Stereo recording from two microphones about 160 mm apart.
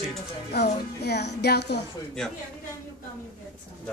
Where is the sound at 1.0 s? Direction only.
90° left.